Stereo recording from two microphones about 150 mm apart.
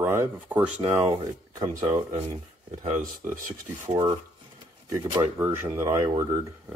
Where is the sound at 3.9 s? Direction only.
35° right (ahead or behind).